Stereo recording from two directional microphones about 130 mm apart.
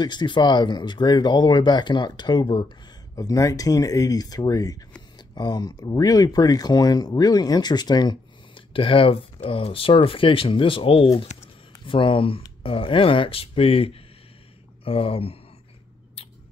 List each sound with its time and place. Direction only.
0.0 s speech: 35° left (ahead or behind)
11.3 s a sound: 60° left (ahead or behind)
11.8 s speech: 40° left (ahead or behind)